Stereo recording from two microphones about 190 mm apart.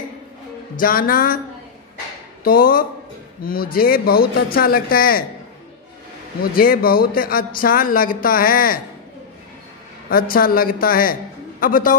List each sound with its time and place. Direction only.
0.7 s speech: 50° left (ahead or behind)
2.4 s speech: 50° left (ahead or behind)
6.5 s speech: 50° left (ahead or behind)
10.0 s speech: 50° left (ahead or behind)